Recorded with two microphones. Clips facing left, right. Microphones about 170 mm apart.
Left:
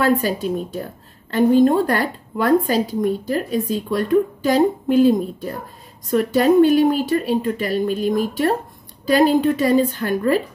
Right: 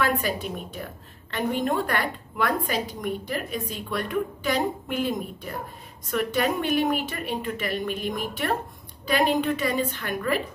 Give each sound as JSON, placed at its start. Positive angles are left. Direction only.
{"t": 0.0, "sound": "a woman's voice", "side_deg": 35}